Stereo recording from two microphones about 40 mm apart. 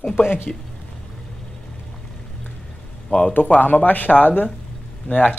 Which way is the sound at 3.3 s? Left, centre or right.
Left.